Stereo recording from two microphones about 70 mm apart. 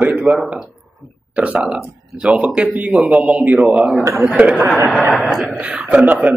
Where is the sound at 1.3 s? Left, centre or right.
Right.